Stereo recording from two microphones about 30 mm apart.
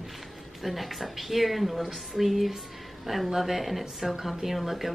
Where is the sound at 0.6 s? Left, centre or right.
Centre.